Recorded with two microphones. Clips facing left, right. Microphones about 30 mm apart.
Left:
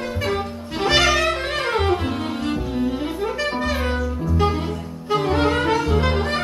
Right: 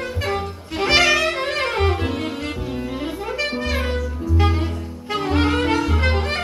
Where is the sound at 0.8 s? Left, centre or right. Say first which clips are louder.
Right 1 dB; right.